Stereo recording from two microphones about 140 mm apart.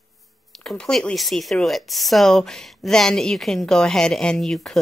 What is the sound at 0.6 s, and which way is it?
Speech, 5° left (ahead or behind).